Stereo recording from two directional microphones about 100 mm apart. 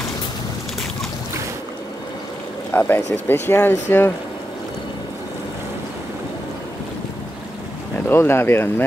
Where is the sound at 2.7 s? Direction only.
25° left (ahead or behind).